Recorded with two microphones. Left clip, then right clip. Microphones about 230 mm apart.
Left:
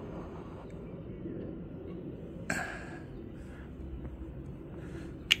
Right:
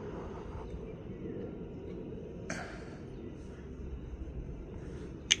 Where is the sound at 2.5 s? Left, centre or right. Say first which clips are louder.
Left 7 dB; left.